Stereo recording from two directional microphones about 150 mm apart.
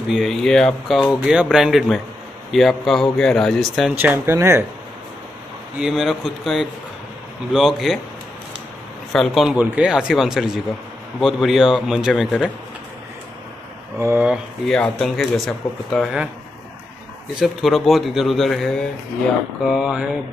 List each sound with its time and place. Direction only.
0.1 s speech: centre (ahead or behind)
3.9 s speech: 15° right (ahead or behind)
5.8 s speech: centre (ahead or behind)
9.1 s speech: centre (ahead or behind)
13.9 s speech: 15° right (ahead or behind)
14.7 s speech: centre (ahead or behind)
17.4 s speech: centre (ahead or behind)